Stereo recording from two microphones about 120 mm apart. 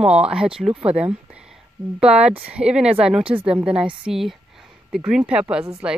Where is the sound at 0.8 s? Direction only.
55° right (ahead or behind).